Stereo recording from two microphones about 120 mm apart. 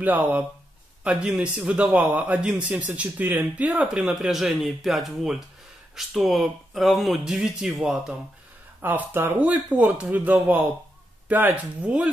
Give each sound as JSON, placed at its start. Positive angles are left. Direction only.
{"t": 0.0, "sound": "speech", "side_deg": -15}
{"t": 8.8, "sound": "speech", "side_deg": -15}